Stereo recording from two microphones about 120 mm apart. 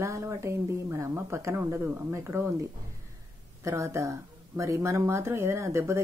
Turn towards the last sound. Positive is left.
turn(degrees=-25)  # may be behind; listen again after turning